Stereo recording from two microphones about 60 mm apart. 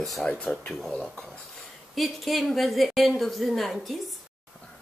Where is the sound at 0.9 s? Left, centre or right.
Centre.